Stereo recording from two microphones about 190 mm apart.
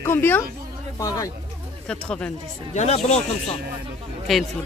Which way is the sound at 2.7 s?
35° left (ahead or behind).